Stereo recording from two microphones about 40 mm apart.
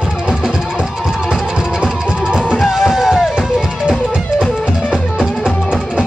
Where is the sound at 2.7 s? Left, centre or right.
Centre.